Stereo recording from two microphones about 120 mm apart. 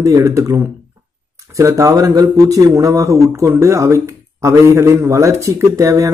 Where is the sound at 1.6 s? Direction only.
25° right (ahead or behind).